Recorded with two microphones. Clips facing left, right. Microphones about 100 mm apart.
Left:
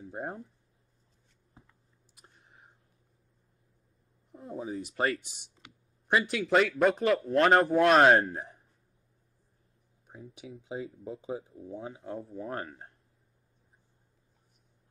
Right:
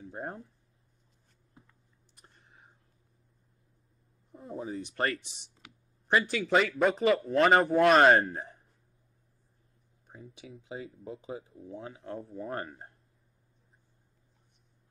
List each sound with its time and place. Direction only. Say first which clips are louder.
0.0 s speech: left 1 dB; centre (ahead or behind)
2.1 s a sound: even; 5° left (ahead or behind)
4.3 s speech: left 1 dB; centre (ahead or behind)
10.1 s a sound: left 2 dB; centre (ahead or behind)
11.4 s speech: left 2 dB; 25° left (ahead or behind)
12.0 s speech: left 1 dB; 5° left (ahead or behind)